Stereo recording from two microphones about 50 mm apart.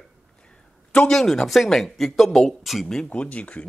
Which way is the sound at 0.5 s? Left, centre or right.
Centre.